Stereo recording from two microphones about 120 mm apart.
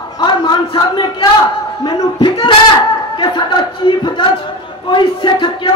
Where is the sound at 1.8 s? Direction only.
35° left (ahead or behind).